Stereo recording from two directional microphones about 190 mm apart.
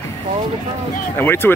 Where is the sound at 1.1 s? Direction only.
10° left (ahead or behind).